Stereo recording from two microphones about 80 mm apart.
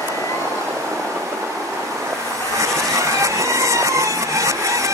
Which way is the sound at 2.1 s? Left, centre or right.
Right.